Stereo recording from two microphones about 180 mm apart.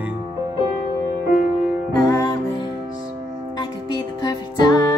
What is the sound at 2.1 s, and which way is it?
Music, 20° left (ahead or behind).